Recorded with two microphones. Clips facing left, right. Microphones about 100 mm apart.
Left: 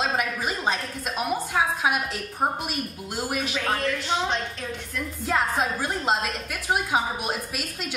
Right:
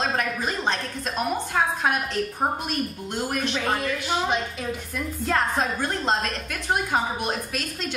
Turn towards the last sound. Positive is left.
turn(degrees=5)  # may be behind; listen again after turning